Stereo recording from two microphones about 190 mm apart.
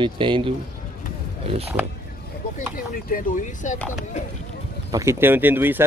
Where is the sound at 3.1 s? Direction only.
45° left (ahead or behind).